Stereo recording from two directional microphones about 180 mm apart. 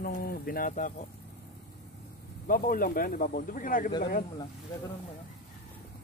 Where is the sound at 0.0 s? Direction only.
55° left (ahead or behind).